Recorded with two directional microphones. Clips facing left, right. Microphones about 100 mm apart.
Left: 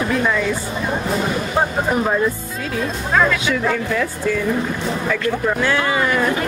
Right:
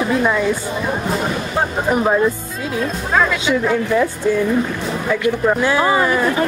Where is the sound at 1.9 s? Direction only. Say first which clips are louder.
Right 5 dB; 15° right (ahead or behind).